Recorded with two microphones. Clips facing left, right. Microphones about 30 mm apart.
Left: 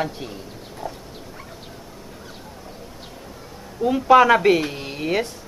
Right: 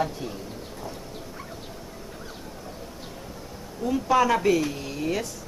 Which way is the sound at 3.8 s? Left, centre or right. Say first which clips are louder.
Left 8 dB; left.